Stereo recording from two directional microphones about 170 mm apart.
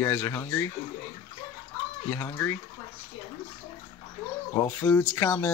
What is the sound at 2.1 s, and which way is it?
Speech, 10° left (ahead or behind).